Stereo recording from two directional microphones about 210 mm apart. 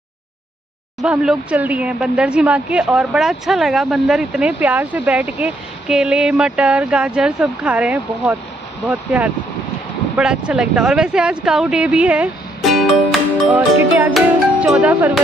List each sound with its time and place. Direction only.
1.0 s speech: 5° right (ahead or behind)